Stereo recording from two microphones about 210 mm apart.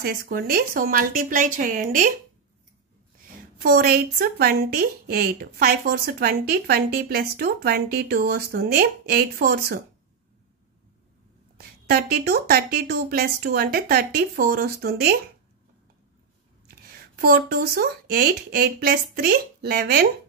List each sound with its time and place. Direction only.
0.0 s speech: 45° right (ahead or behind)
3.5 s a woman's voice: 45° right (ahead or behind)
11.5 s a woman's voice: 45° right (ahead or behind)
16.6 s speech: 50° right (ahead or behind)